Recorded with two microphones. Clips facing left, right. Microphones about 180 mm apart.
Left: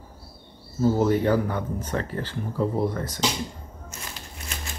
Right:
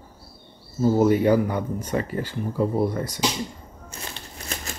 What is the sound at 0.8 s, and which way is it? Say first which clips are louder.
Speech: right 3 dB; 10° right (ahead or behind).